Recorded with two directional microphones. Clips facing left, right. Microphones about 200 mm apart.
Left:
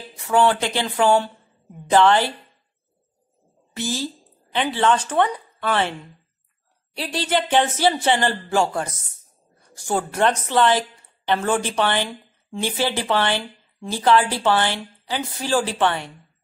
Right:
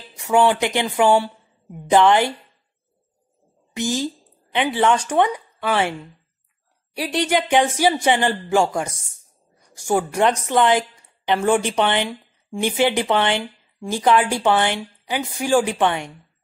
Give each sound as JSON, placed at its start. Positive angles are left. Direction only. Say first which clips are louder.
{"t": 0.2, "sound": "speech", "louder": "right 2 dB", "side_deg": -15}
{"t": 3.7, "sound": "a woman's voice", "louder": "right 4 dB", "side_deg": -15}
{"t": 7.0, "sound": "speech", "louder": "right 3 dB", "side_deg": -15}